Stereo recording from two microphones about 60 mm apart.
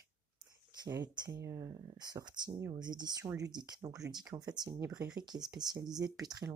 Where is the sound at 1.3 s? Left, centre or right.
Right.